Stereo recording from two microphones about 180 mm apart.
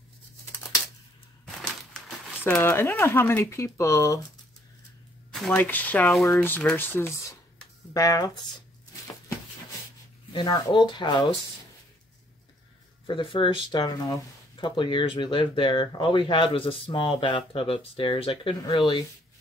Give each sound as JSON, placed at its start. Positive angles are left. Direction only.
{"t": 2.0, "sound": "speech", "side_deg": 5}
{"t": 5.3, "sound": "speech", "side_deg": 5}
{"t": 10.3, "sound": "speech", "side_deg": 25}
{"t": 13.0, "sound": "speech", "side_deg": 30}